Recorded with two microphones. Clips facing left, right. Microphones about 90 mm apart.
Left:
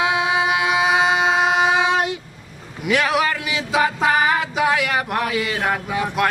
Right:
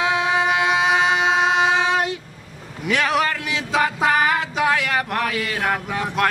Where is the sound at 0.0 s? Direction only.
10° left (ahead or behind).